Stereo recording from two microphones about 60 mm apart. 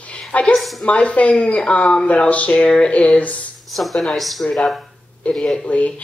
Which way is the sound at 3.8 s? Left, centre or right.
Centre.